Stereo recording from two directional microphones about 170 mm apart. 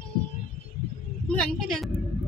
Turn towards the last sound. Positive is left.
turn(degrees=5)  # may be behind; listen again after turning